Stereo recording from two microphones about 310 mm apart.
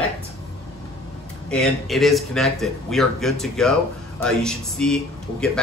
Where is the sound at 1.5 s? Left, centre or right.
Centre.